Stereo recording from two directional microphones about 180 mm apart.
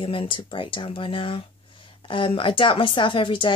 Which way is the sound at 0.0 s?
30° left (ahead or behind).